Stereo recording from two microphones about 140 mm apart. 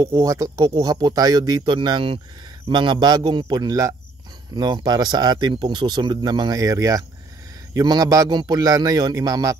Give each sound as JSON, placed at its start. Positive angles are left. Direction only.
{"t": 0.0, "sound": "speech", "side_deg": -25}